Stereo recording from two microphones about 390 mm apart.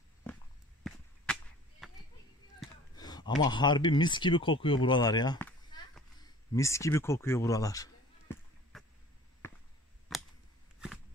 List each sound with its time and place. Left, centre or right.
0.3 s walk: centre
0.8 s whip: centre
2.6 s a sound: centre
3.0 s speech: centre
4.8 s a sound: centre
10.1 s scissors: centre